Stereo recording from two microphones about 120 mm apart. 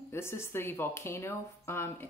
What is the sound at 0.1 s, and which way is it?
Speech, 20° left (ahead or behind).